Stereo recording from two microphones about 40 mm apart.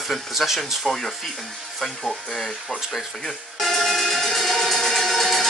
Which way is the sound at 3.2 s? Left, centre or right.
Centre.